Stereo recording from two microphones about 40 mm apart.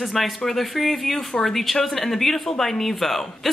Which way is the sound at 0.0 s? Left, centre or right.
Centre.